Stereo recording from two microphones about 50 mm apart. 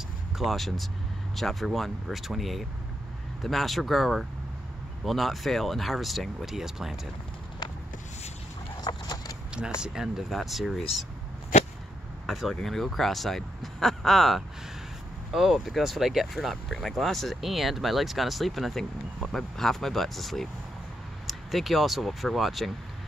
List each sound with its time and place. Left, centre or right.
0.4 s speech: centre
9.5 s speech: centre
10.3 s speech: centre
12.3 s speech: centre